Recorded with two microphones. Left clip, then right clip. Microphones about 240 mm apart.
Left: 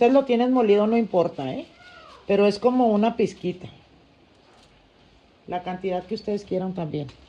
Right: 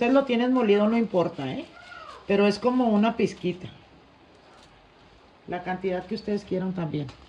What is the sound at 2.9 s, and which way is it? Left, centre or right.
Speech, centre.